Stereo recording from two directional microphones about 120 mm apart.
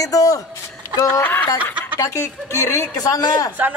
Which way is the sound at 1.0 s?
15° left (ahead or behind).